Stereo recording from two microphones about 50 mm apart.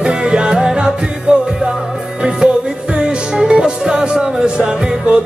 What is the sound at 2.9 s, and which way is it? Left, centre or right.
Music, centre.